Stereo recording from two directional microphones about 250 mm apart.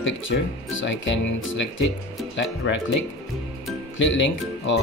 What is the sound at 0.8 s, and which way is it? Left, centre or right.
Speech, left.